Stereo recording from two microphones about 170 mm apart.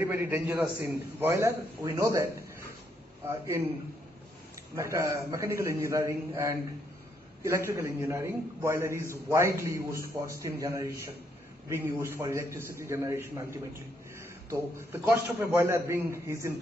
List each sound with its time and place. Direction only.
0.0 s a man's voice: 10° right (ahead or behind)
4.7 s a man's voice: 15° right (ahead or behind)